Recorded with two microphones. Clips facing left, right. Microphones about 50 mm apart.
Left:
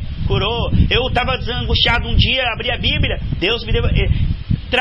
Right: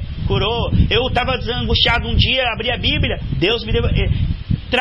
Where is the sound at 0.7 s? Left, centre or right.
Left.